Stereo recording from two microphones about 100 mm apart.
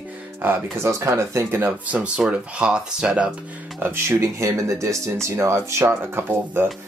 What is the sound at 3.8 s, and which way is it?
Speech, 25° right (ahead or behind).